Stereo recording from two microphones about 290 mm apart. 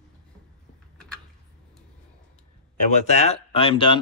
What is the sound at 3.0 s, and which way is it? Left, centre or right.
Speech, left.